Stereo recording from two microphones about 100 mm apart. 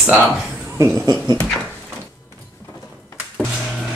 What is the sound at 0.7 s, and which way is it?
Speech, 30° right (ahead or behind).